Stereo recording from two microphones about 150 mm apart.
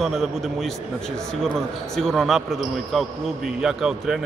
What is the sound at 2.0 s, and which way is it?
A man's voice, centre (ahead or behind).